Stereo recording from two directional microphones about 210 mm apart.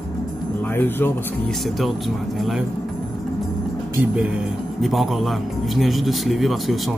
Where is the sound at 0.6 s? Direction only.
10° left (ahead or behind).